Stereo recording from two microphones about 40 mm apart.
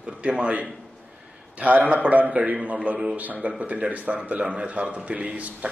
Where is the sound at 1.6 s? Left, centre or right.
Right.